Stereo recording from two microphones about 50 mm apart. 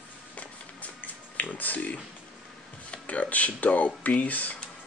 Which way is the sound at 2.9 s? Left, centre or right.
Left.